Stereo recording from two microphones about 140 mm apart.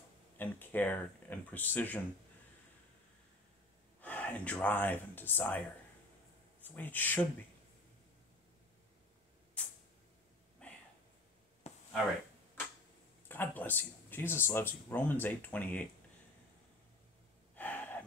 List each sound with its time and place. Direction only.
0.4 s speech: 15° left (ahead or behind)
4.0 s speech: 10° left (ahead or behind)
6.6 s speech: 15° left (ahead or behind)
9.6 s a sound: 10° left (ahead or behind)
11.6 s a sound: 50° left (ahead or behind)
13.3 s speech: 15° left (ahead or behind)
17.6 s gasp: 10° left (ahead or behind)